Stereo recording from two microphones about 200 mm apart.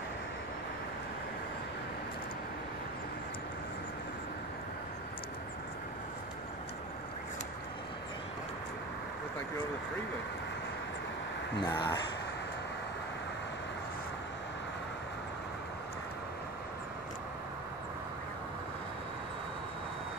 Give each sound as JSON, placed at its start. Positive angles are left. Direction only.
{"t": 11.6, "sound": "speech", "side_deg": 20}